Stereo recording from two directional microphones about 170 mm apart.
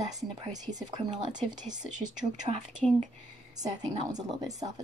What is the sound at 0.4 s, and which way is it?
Speech, 45° right (ahead or behind).